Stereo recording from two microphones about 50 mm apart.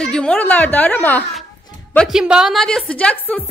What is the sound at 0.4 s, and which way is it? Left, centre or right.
A woman's voice, left.